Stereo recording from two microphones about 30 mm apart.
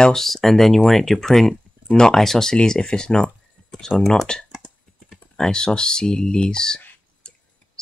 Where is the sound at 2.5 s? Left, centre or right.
Left.